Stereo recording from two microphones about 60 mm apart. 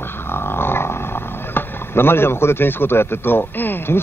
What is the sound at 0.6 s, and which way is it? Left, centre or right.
Roaring cats, left.